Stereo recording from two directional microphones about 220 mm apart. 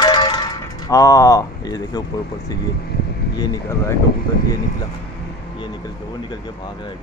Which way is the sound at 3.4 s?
15° left (ahead or behind).